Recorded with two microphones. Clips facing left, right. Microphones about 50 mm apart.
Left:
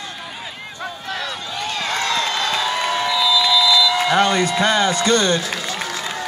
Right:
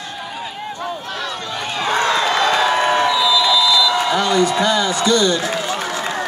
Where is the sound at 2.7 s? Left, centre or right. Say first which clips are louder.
Right 5 dB; right.